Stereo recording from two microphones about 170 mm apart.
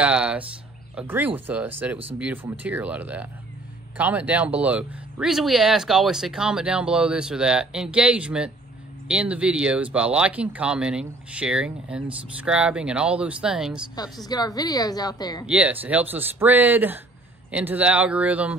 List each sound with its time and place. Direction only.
0.0 s speech: 5° right (ahead or behind)
14.1 s a woman's voice: 25° left (ahead or behind)
15.4 s speech: 10° right (ahead or behind)